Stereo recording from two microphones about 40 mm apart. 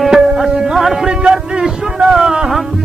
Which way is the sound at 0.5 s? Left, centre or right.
Centre.